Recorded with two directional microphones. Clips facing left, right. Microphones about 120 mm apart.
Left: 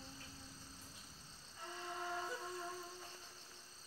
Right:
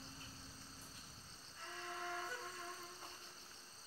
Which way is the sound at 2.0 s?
15° left (ahead or behind).